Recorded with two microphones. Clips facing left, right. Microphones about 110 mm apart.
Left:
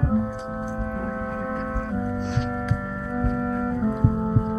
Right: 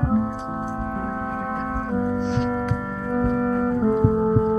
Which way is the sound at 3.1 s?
50° right (ahead or behind).